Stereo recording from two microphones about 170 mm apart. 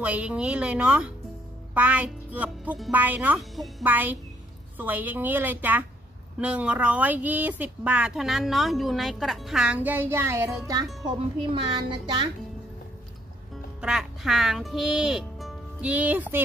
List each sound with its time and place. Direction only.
0.0 s speech: 5° right (ahead or behind)
3.8 s speech: 10° right (ahead or behind)
11.1 s speech: 30° right (ahead or behind)
13.7 s speech: 5° right (ahead or behind)